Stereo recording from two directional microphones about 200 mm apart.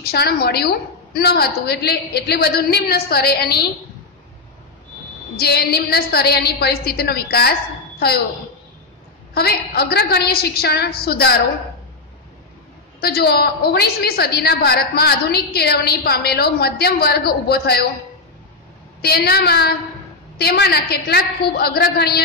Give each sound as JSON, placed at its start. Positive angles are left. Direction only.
{"t": 0.1, "sound": "a woman's voice", "side_deg": 50}
{"t": 5.3, "sound": "a woman's voice", "side_deg": 50}
{"t": 9.3, "sound": "a woman's voice", "side_deg": 50}
{"t": 13.0, "sound": "a woman's voice", "side_deg": 50}
{"t": 18.9, "sound": "a woman's voice", "side_deg": 50}